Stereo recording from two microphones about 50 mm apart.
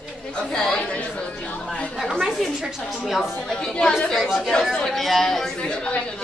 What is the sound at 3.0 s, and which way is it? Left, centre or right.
Speech, centre.